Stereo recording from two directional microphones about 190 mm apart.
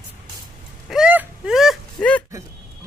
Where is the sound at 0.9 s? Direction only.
5° right (ahead or behind).